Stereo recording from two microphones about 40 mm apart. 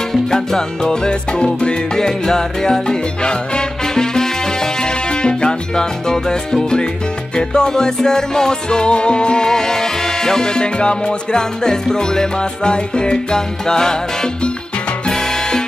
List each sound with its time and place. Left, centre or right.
0.1 s music: centre
15.0 s salsa music: centre